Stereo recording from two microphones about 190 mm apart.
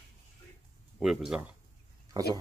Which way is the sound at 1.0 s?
5° right (ahead or behind).